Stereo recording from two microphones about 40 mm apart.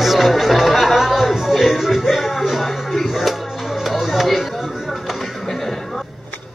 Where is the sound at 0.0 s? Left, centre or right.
Centre.